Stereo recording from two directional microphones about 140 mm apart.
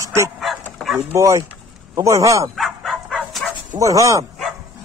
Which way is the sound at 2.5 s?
Centre (ahead or behind).